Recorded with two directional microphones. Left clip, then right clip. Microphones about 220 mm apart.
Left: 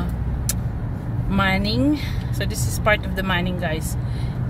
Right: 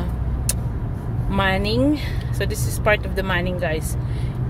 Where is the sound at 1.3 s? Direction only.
Centre (ahead or behind).